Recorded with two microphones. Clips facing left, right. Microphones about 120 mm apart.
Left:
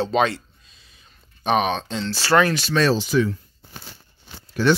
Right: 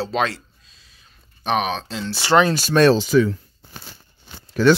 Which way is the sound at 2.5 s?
45° right (ahead or behind).